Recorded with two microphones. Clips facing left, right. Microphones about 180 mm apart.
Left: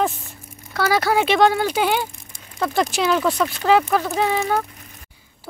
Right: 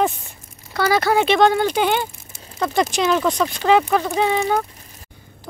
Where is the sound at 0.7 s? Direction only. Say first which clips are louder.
Right 1 dB; 5° left (ahead or behind).